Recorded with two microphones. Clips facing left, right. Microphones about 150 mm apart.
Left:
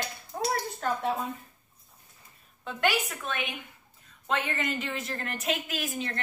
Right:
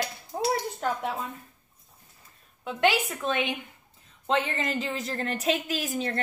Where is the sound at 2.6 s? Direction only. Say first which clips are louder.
Right 4 dB; 20° right (ahead or behind).